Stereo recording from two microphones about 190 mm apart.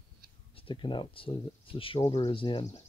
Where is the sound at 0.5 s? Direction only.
25° left (ahead or behind).